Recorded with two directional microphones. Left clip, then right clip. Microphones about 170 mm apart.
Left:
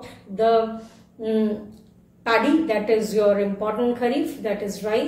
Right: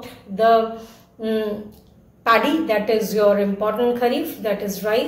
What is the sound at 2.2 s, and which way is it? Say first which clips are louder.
A woman's voice: right 3 dB; 15° left (ahead or behind).